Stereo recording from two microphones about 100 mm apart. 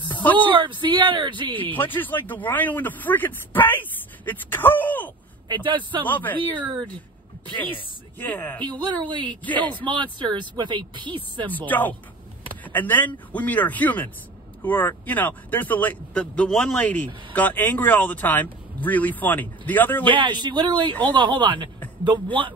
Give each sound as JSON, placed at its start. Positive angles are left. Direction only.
{"t": 0.2, "sound": "a sound", "side_deg": 15}
{"t": 0.5, "sound": "speech", "side_deg": -55}
{"t": 1.7, "sound": "speech", "side_deg": 20}
{"t": 5.5, "sound": "speech", "side_deg": -50}
{"t": 6.0, "sound": "speech", "side_deg": 20}
{"t": 6.6, "sound": "speech", "side_deg": -45}
{"t": 8.2, "sound": "speech", "side_deg": 20}
{"t": 8.6, "sound": "speech", "side_deg": -50}
{"t": 11.5, "sound": "speech", "side_deg": 15}
{"t": 16.8, "sound": "speech", "side_deg": 15}
{"t": 20.2, "sound": "speech", "side_deg": -50}